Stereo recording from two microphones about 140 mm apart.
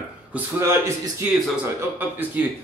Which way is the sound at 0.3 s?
20° right (ahead or behind).